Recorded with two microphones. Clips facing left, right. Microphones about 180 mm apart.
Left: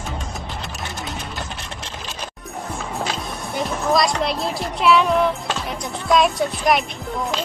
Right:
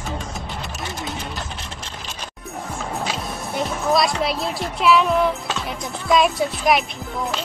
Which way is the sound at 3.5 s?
Centre (ahead or behind).